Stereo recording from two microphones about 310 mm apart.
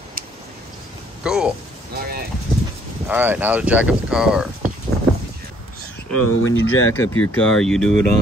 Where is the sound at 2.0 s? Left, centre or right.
Right.